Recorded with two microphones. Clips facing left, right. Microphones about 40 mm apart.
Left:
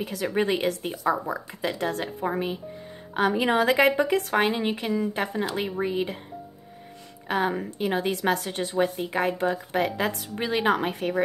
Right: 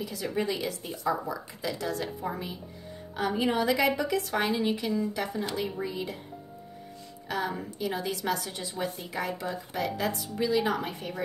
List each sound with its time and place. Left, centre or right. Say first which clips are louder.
0.0 s a woman's voice: left 5 dB; left
3.2 s speech: left 5 dB; left
7.2 s speech: left 6 dB; left